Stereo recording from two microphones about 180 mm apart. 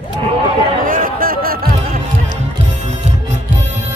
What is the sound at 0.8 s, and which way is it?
Music, 50° right (ahead or behind).